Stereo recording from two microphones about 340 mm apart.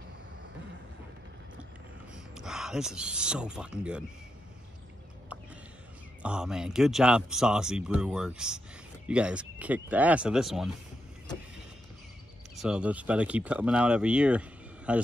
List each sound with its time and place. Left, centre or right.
2.3 s speech: centre
6.2 s speech: centre
12.5 s speech: centre